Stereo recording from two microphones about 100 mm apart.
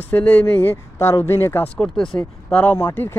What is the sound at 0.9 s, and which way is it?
Speech, 30° left (ahead or behind).